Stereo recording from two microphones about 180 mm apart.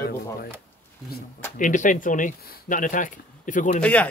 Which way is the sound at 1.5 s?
45° left (ahead or behind).